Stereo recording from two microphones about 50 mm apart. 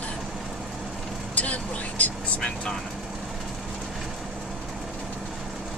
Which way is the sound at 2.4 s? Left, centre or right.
Centre.